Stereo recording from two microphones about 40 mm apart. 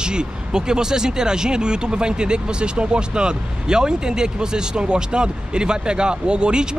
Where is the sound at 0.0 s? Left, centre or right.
Right.